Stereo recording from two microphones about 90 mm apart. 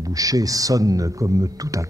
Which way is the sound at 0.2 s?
40° right (ahead or behind).